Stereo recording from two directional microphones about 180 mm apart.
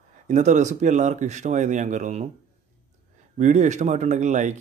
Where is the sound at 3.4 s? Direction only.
40° right (ahead or behind).